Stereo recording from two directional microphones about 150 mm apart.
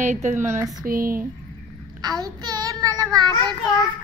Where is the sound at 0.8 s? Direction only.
70° right (ahead or behind).